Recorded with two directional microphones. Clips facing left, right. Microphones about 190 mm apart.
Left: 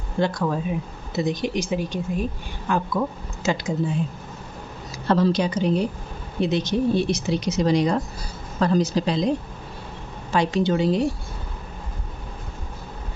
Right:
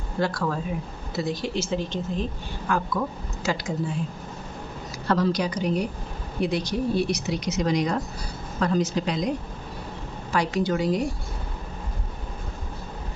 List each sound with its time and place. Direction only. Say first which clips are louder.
0.2 s speech: left 3 dB; 20° left (ahead or behind)
2.7 s speech: left 3 dB; 20° left (ahead or behind)
5.0 s a woman's voice: left 3 dB; 25° left (ahead or behind)
10.3 s speech: left 3 dB; 25° left (ahead or behind)